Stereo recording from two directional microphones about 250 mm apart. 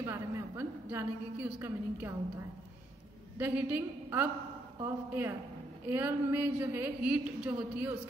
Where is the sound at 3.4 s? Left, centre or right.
Centre.